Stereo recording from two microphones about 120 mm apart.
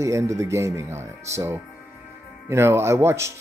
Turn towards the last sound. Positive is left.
turn(degrees=-25)  # may be behind; listen again after turning